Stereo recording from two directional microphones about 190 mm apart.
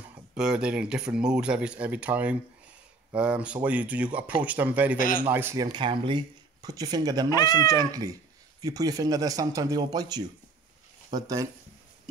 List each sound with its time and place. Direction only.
0.3 s speech: 5° right (ahead or behind)
4.9 s a man's voice: 45° left (ahead or behind)
5.3 s speech: 10° right (ahead or behind)
7.2 s speech: 20° left (ahead or behind)
7.6 s speech: 20° right (ahead or behind)